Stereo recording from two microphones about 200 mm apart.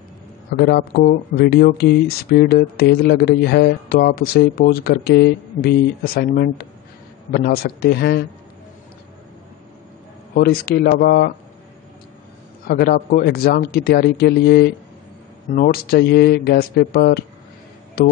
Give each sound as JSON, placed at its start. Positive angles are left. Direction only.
{"t": 0.6, "sound": "speech", "side_deg": 50}
{"t": 10.3, "sound": "speech", "side_deg": 50}
{"t": 12.6, "sound": "speech", "side_deg": 50}